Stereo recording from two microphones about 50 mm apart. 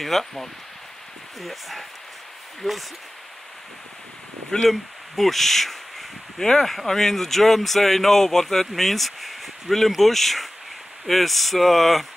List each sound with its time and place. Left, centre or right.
0.0 s speech: centre
4.5 s speech: centre